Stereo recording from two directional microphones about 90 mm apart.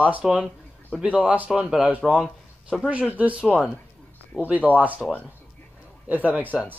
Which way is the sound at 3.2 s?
15° right (ahead or behind).